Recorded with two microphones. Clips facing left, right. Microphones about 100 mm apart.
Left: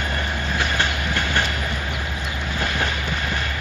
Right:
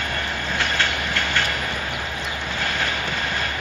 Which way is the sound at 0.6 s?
15° left (ahead or behind).